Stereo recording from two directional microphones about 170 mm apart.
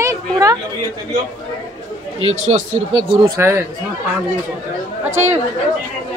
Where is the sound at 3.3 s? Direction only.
15° right (ahead or behind).